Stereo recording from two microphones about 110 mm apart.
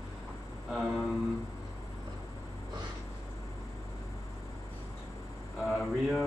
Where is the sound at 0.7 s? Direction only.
5° right (ahead or behind).